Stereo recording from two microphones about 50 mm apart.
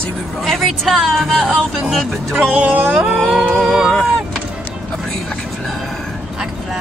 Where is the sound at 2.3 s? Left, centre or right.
Right.